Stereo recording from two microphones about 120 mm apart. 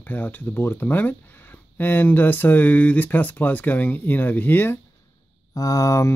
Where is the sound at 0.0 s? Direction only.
15° left (ahead or behind).